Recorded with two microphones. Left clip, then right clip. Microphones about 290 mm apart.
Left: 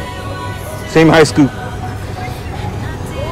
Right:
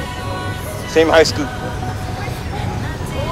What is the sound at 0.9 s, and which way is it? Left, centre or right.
Speech, left.